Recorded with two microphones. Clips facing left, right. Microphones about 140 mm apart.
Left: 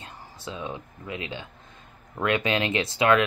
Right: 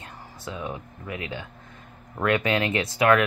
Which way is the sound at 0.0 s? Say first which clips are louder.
Right 1 dB; 25° left (ahead or behind).